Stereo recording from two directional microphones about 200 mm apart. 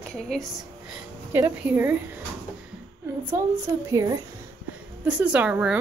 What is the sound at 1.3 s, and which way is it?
Speech, 10° right (ahead or behind).